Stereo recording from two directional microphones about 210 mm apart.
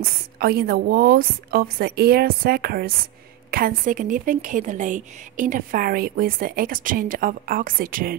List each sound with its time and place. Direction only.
0.4 s a woman's voice: 45° right (ahead or behind)